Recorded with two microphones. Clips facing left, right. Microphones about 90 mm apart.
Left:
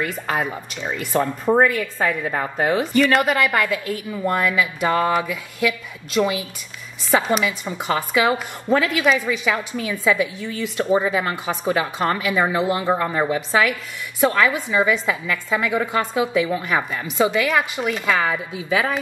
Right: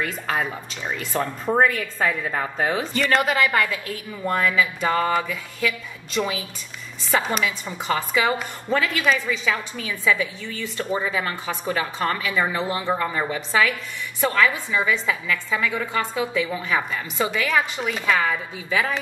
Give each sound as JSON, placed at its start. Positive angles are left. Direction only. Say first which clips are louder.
{"t": 0.0, "sound": "speech", "louder": "left 2 dB", "side_deg": 0}